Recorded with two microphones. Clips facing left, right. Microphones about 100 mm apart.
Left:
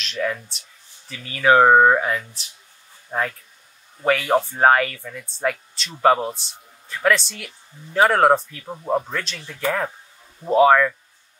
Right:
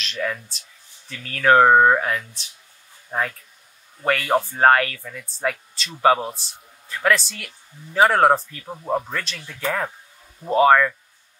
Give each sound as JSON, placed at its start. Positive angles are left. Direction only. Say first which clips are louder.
{"t": 0.0, "sound": "a man's voice", "louder": "left 2 dB", "side_deg": 0}